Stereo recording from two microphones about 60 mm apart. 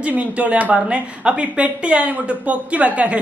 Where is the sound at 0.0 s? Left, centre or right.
Right.